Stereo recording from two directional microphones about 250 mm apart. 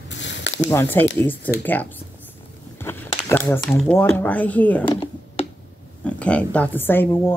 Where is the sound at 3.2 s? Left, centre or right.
Centre.